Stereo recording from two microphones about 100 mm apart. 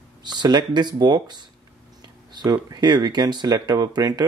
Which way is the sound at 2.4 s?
40° right (ahead or behind).